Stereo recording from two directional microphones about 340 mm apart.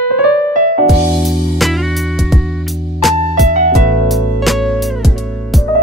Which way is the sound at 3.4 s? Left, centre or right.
Right.